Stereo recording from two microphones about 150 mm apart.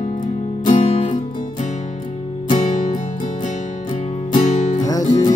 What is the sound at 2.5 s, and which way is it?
Music, 55° left (ahead or behind).